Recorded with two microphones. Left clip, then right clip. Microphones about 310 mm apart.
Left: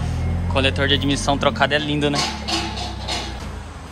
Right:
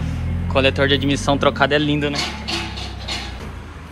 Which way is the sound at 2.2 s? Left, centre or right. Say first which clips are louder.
Left 1 dB; left.